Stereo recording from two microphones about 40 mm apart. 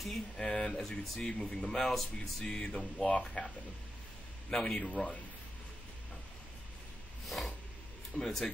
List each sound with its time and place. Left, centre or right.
0.4 s speech: centre
0.7 s speech: centre
2.4 s speech: centre
4.5 s speech: centre
4.8 s speech: left
7.2 s a sound: centre
8.2 s speech: centre